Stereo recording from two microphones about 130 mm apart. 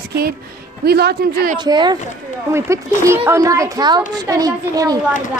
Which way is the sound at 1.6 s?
35° right (ahead or behind).